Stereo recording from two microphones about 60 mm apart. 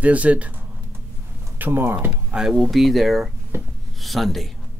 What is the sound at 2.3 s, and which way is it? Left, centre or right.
Speech, centre.